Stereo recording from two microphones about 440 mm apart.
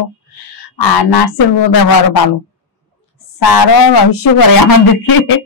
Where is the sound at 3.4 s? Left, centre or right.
Left.